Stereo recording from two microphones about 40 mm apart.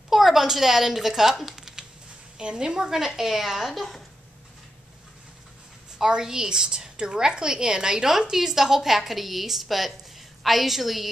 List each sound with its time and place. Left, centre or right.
0.1 s speech: centre
2.3 s a woman's voice: right; by 4.0 s centre
5.9 s a woman's voice: centre